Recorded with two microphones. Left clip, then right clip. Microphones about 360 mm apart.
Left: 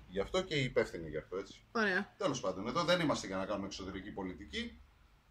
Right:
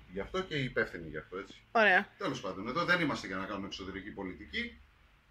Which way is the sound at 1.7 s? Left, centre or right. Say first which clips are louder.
Right 9 dB; centre.